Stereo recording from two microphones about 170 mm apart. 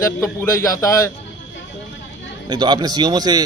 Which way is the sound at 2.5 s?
25° right (ahead or behind).